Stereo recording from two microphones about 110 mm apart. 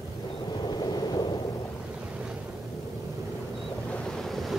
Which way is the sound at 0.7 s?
40° left (ahead or behind).